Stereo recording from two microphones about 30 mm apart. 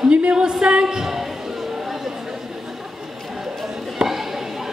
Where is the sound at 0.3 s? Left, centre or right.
Right.